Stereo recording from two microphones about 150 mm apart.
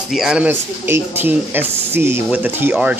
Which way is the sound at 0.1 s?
5° right (ahead or behind).